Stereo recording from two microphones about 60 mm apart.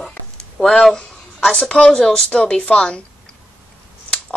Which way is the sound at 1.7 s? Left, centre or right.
Centre.